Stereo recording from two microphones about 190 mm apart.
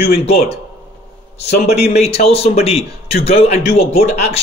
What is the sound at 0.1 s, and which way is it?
Speech, 30° left (ahead or behind).